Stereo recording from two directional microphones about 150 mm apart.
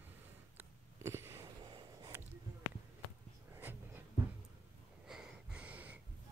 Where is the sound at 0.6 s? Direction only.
15° right (ahead or behind).